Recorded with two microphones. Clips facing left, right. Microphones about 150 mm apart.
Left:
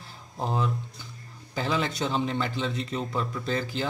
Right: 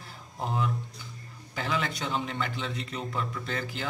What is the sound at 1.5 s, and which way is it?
A man's voice, 30° left (ahead or behind).